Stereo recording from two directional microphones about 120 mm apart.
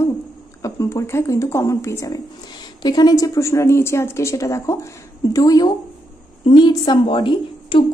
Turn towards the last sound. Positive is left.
turn(degrees=45)  # may be behind; listen again after turning